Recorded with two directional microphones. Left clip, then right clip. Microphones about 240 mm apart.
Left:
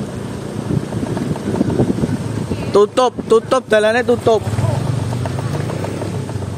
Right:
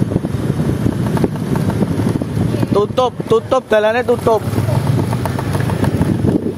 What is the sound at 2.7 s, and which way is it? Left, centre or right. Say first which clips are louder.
Speech: left 3 dB; left.